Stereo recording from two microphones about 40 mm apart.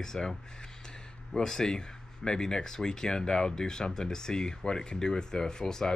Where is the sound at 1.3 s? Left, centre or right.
Centre.